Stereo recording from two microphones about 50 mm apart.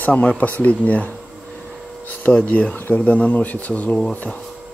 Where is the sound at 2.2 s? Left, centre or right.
Left.